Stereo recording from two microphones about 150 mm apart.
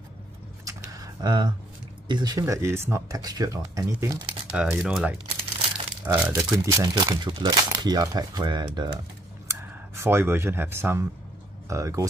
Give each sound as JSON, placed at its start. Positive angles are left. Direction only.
{"t": 0.7, "sound": "a sound", "side_deg": -20}
{"t": 2.0, "sound": "speech", "side_deg": -30}
{"t": 4.5, "sound": "speech", "side_deg": -5}
{"t": 6.3, "sound": "speech", "side_deg": -20}
{"t": 9.5, "sound": "speech", "side_deg": -15}